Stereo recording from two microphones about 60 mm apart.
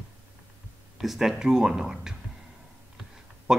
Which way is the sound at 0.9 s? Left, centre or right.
Centre.